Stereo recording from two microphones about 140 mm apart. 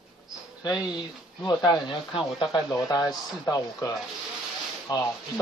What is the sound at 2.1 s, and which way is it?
Speech, 5° right (ahead or behind).